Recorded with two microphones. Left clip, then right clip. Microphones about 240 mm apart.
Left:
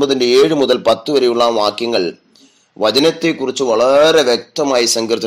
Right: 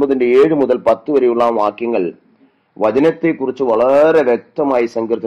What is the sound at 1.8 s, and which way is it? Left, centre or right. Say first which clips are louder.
Speech: left 1 dB; left.